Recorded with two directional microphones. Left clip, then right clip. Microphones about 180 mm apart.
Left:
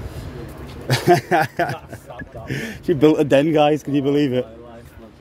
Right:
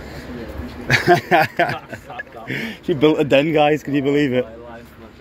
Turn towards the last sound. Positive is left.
turn(degrees=20)  # may be behind; listen again after turning